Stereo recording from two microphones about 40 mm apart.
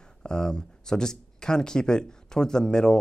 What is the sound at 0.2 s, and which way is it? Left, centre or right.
Speech, centre.